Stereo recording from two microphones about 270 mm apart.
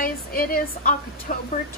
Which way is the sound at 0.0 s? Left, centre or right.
Left.